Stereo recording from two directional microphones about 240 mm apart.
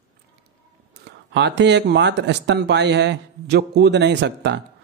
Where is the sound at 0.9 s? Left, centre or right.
Right.